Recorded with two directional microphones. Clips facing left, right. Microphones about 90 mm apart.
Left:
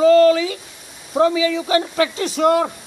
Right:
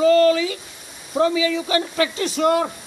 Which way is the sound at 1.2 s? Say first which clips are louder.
Left 2 dB; 90° left.